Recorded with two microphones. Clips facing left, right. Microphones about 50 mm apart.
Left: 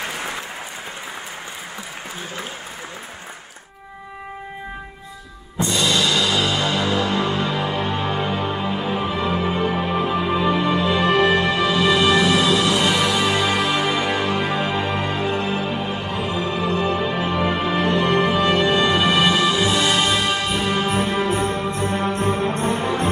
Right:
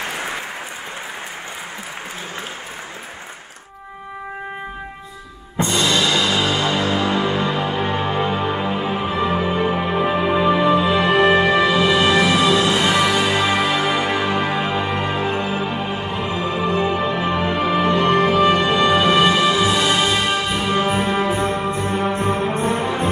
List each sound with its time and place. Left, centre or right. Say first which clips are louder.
5.6 s music: right 2 dB; right; by 17.6 s centre
17.6 s music: right 5 dB; centre